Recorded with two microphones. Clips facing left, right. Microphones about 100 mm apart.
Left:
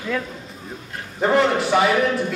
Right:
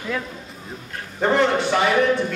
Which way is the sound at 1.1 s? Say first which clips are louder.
Left 1 dB; 5° left (ahead or behind).